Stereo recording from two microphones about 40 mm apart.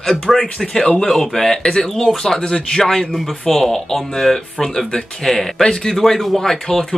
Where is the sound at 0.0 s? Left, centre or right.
Centre.